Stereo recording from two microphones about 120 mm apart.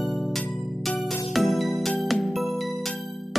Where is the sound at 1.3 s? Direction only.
Centre (ahead or behind).